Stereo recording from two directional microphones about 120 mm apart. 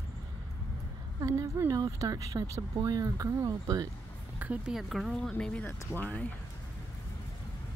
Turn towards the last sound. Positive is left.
turn(degrees=15)  # may be behind; listen again after turning